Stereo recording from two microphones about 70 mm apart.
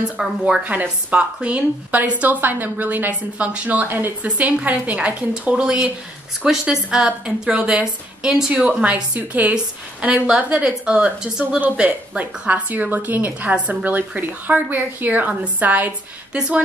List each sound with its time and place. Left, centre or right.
0.4 s a woman's voice: right
3.8 s a woman's voice: right
4.2 s a woman's voice: right